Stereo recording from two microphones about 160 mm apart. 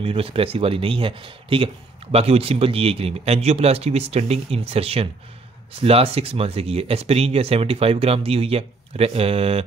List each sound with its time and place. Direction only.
0.0 s speech: 35° right (ahead or behind)